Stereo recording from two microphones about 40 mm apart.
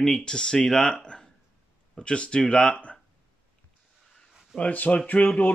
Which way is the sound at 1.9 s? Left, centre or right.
Left.